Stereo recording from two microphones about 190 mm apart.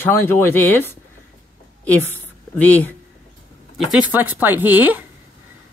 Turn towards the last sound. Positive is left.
turn(degrees=-10)  # may be behind; listen again after turning